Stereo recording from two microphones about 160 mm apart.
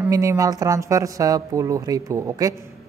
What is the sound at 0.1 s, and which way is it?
A man's voice, 20° right (ahead or behind).